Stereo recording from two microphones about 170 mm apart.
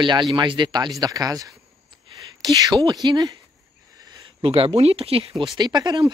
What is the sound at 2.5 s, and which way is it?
Speech, 25° right (ahead or behind).